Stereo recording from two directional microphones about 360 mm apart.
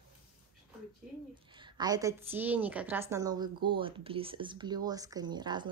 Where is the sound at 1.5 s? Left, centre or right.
Centre.